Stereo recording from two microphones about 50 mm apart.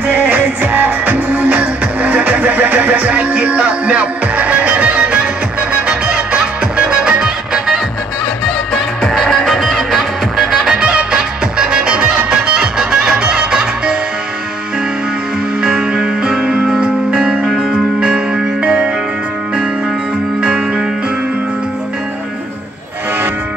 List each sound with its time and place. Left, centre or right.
0.0 s music: right; by 7.8 s centre
9.0 s music: centre
10.7 s music: right
15.6 s music: centre
20.4 s music: centre